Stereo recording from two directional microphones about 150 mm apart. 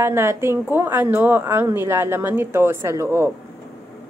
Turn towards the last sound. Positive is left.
turn(degrees=-20)  # may be behind; listen again after turning